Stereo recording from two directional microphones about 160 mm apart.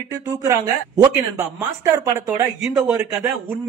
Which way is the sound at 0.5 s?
20° right (ahead or behind).